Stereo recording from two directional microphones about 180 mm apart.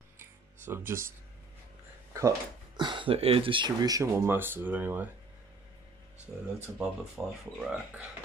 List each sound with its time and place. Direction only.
0.2 s music: 15° right (ahead or behind)
2.8 s speech: 25° right (ahead or behind); by 5.1 s 10° right (ahead or behind)
6.4 s speech: 5° right (ahead or behind)